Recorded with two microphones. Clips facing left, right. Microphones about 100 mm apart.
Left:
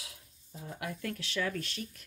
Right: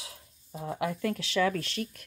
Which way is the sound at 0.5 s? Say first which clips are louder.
Right 8 dB; 90° right.